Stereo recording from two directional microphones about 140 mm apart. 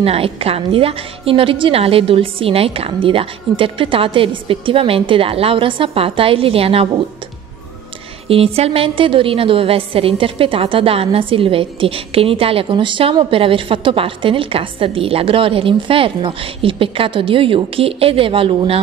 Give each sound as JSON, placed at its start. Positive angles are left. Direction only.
{"t": 0.0, "sound": "a woman's voice", "side_deg": -45}
{"t": 8.3, "sound": "a woman's voice", "side_deg": -45}